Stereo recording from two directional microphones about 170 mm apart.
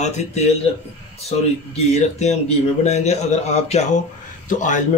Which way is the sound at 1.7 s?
40° left (ahead or behind).